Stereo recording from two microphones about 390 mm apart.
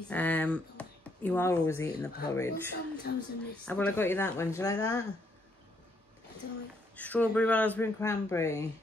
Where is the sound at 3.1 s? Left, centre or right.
Left.